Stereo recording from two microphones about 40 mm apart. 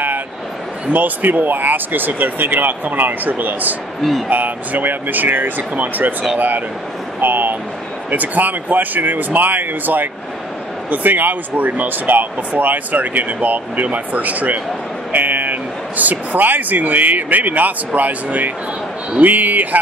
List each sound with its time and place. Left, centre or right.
0.9 s speech: right
7.2 s speech: right